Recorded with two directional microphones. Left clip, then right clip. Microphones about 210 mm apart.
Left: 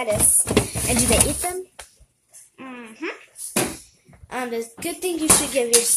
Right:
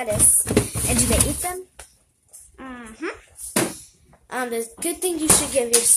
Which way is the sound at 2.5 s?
10° right (ahead or behind).